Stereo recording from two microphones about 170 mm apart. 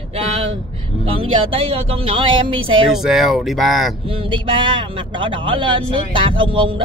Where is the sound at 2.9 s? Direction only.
Centre (ahead or behind).